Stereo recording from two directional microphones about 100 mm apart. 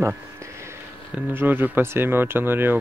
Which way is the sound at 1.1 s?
20° right (ahead or behind).